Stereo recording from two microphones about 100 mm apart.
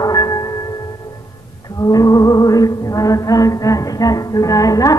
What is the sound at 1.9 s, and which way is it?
Music, 35° left (ahead or behind).